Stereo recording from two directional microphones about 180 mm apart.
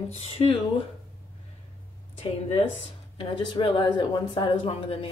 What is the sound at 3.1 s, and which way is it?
Speech, 25° left (ahead or behind).